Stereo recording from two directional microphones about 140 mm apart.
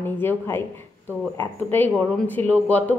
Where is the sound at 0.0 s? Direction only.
15° left (ahead or behind).